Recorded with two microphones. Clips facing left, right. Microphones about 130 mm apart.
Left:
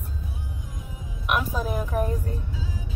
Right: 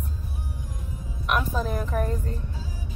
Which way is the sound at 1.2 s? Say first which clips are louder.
Even; 10° left (ahead or behind).